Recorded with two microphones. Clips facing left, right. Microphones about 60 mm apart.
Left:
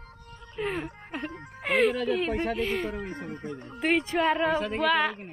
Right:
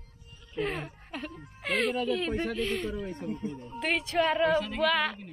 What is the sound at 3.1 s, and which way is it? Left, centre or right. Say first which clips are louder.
Speech: right 1 dB; left.